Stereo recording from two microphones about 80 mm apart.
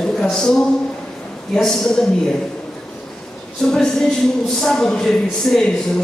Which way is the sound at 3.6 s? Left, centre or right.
Centre.